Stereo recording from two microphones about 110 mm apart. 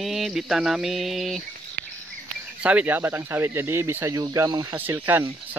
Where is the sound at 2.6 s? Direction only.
15° right (ahead or behind).